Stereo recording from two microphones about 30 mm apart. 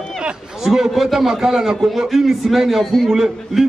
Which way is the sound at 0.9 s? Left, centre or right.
Centre.